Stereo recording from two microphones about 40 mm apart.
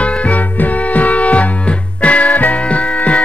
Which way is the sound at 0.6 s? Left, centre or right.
Left.